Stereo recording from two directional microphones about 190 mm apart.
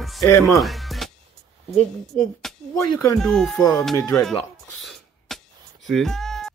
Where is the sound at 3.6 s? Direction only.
15° left (ahead or behind).